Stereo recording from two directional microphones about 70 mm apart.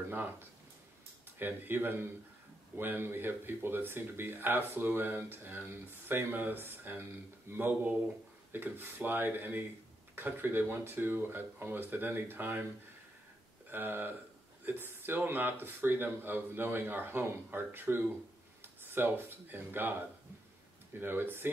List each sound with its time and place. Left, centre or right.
0.1 s speech: right
13.7 s speech: right
21.0 s speech: right